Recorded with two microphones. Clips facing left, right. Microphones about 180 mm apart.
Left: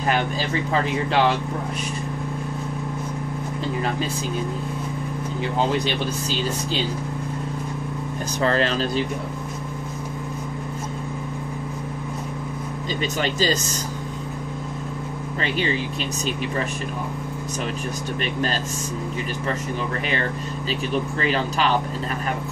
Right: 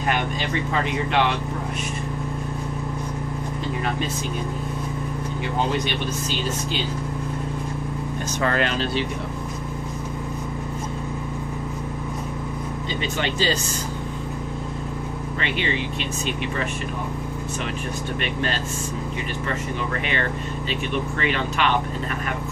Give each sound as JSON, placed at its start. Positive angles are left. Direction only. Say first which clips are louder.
{"t": 8.4, "sound": "speech", "louder": "left 2 dB", "side_deg": 35}
{"t": 13.0, "sound": "speech", "louder": "left 2 dB", "side_deg": 40}
{"t": 15.4, "sound": "speech", "louder": "left 2 dB", "side_deg": 40}
{"t": 18.2, "sound": "speech", "louder": "left 2 dB", "side_deg": 40}
{"t": 21.2, "sound": "speech", "louder": "left 1 dB", "side_deg": 35}